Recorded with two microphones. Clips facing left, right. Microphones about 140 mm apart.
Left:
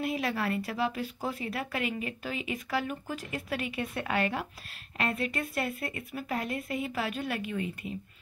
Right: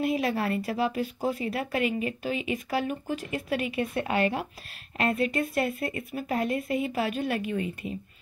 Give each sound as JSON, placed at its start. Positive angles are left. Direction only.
{"t": 0.0, "sound": "a woman's voice", "side_deg": -25}